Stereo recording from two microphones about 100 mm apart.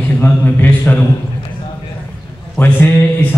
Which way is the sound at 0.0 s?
20° left (ahead or behind).